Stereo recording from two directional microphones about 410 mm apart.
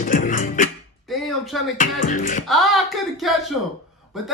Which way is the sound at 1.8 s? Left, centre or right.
Centre.